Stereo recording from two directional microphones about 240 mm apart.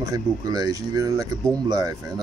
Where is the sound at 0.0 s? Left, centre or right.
Centre.